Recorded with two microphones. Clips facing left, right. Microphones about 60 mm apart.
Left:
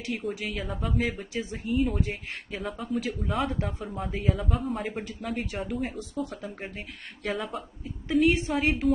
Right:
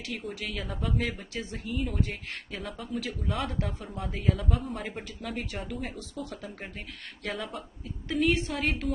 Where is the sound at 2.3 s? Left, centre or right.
Centre.